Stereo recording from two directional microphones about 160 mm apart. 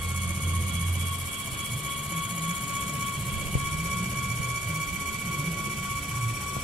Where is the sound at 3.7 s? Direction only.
5° right (ahead or behind).